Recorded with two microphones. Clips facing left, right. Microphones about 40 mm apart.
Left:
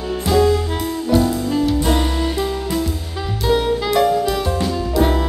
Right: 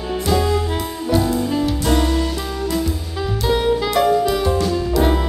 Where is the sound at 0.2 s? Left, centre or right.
Centre.